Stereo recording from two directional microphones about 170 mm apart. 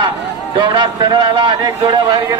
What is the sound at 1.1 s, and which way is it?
A man's voice, 25° right (ahead or behind).